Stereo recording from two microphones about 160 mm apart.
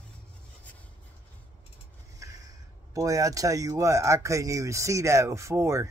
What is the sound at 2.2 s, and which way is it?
Speech, 20° right (ahead or behind).